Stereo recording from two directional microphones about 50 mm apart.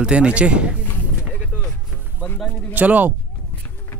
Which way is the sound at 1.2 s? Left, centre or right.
Centre.